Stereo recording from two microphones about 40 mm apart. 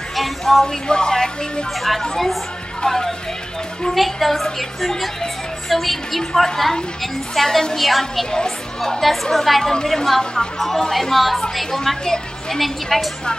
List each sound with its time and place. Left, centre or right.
0.1 s music: centre
0.8 s speech: centre
1.8 s a woman's voice: centre
3.9 s a woman's voice: centre
8.0 s a woman's voice: centre
9.0 s a woman's voice: centre
12.0 s a woman's voice: centre
12.5 s a woman's voice: centre